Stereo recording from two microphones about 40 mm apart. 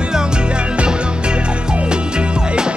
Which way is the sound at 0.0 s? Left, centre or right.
Right.